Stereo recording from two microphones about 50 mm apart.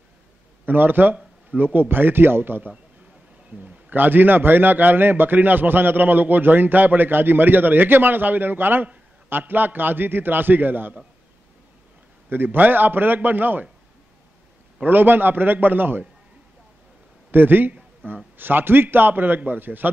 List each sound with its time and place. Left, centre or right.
0.7 s a man's voice: right
12.3 s a man's voice: right
14.9 s a man's voice: right
17.3 s a man's voice: right